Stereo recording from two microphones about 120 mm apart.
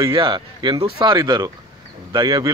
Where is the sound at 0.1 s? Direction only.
45° right (ahead or behind).